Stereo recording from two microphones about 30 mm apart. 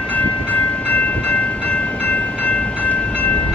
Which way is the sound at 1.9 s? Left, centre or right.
Left.